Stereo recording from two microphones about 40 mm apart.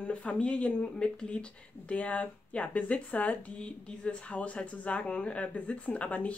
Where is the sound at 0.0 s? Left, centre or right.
Left.